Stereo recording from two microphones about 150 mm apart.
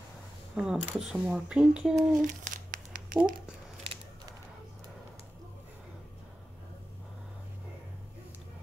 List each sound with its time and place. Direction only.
0.6 s speech: 5° right (ahead or behind)
2.2 s crumpling: 60° right (ahead or behind)